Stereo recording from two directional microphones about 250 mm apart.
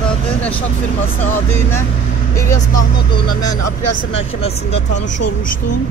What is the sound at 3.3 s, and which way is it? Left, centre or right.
Speech, centre.